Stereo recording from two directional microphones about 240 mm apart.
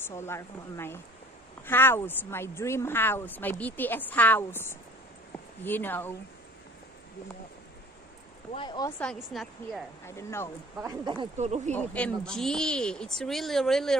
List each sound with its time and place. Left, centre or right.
0.0 s speech: centre
8.5 s speech: centre
10.0 s speech: centre
10.8 s speech: centre
11.7 s speech: centre